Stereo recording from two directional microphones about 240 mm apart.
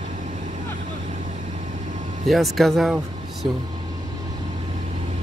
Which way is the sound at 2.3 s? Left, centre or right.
Centre.